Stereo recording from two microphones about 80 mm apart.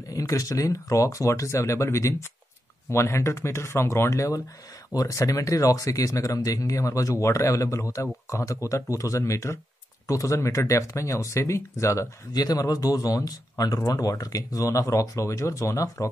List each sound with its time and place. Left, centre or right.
0.1 s speech: left
12.4 s speech: left